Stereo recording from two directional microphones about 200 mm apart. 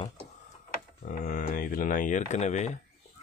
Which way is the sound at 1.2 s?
45° left (ahead or behind).